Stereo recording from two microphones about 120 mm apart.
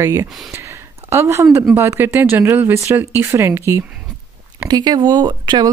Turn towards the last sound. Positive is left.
turn(degrees=-40)  # may be behind; listen again after turning